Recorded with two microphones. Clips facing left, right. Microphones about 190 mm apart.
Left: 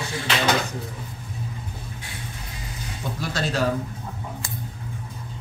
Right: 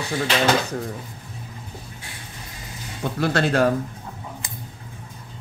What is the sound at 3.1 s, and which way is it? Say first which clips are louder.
Speech: right 6 dB; 60° right (ahead or behind).